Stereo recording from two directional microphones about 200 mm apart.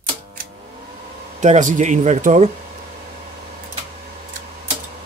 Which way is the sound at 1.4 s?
35° right (ahead or behind).